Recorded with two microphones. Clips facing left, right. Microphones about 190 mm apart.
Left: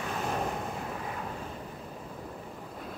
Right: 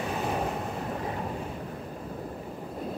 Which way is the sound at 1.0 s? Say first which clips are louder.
Right 5 dB; 30° right (ahead or behind).